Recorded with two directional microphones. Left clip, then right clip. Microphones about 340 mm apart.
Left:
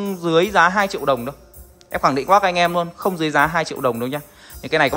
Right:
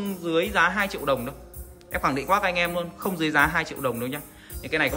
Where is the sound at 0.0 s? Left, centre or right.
Centre.